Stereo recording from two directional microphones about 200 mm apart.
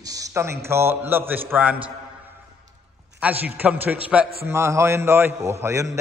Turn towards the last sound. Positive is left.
turn(degrees=-15)  # may be behind; listen again after turning